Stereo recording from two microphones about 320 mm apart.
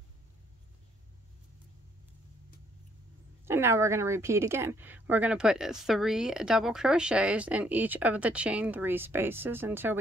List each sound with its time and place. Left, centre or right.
3.4 s a woman's voice: centre